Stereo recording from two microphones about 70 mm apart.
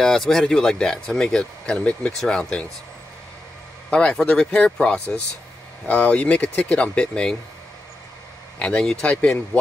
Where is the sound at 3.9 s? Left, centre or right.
Centre.